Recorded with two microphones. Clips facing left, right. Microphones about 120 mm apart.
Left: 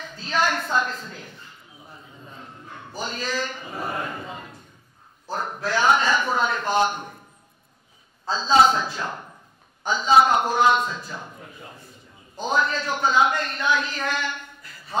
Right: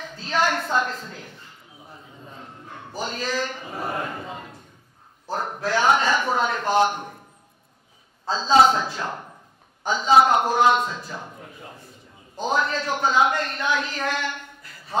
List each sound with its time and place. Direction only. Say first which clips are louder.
0.0 s a woman's voice: right 1 dB; 50° right (ahead or behind)
1.1 s bow-wow: even; 45° right (ahead or behind)
3.0 s a man's voice: right 1 dB; 55° right (ahead or behind)
5.6 s speech: even; 55° right (ahead or behind)
7.0 s a sound: right 1 dB; 30° right (ahead or behind)
8.6 s a man's voice: right 1 dB; 60° right (ahead or behind)